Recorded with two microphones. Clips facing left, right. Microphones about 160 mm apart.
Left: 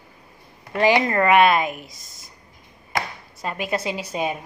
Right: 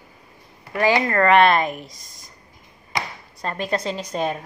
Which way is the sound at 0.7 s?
20° left (ahead or behind).